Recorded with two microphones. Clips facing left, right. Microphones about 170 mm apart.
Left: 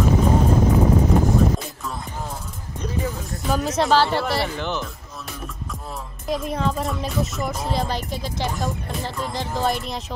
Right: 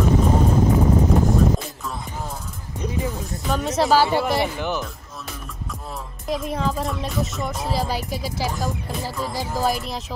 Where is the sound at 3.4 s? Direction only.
Centre (ahead or behind).